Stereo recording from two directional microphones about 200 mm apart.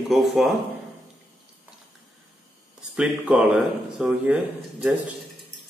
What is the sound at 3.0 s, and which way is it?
A man's voice, 5° right (ahead or behind).